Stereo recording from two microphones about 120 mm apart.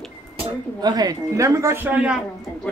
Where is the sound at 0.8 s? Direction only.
35° right (ahead or behind); by 2.2 s 10° right (ahead or behind).